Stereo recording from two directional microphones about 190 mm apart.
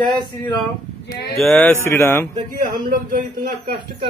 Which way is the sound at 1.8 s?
15° left (ahead or behind).